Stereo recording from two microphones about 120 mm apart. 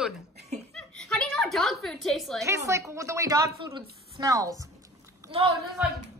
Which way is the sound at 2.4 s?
25° right (ahead or behind).